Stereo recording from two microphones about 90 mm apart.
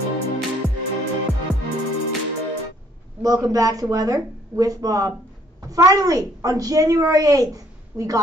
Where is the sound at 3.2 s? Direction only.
40° right (ahead or behind).